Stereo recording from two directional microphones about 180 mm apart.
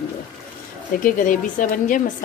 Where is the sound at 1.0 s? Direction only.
50° left (ahead or behind).